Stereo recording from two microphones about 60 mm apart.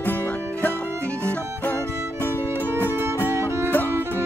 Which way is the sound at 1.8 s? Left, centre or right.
Left.